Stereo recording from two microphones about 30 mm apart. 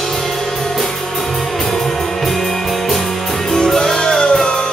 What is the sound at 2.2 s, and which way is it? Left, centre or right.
Music, centre.